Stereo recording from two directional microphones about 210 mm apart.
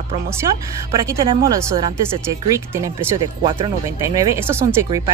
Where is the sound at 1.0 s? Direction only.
20° right (ahead or behind).